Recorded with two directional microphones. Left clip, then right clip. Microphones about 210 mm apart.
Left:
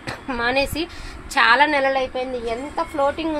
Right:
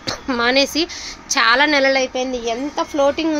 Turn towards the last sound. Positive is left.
turn(degrees=-40)  # may be behind; listen again after turning